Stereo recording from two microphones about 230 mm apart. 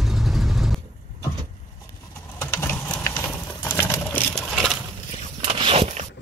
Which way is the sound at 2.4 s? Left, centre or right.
Centre.